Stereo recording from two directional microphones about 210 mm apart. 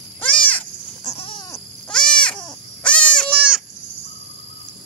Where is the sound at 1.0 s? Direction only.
30° left (ahead or behind).